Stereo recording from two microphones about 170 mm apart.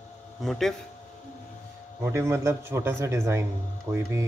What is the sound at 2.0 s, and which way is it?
A man's voice, 15° right (ahead or behind).